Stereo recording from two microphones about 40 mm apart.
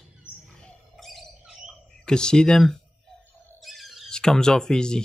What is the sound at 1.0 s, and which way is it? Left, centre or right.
Bird, centre.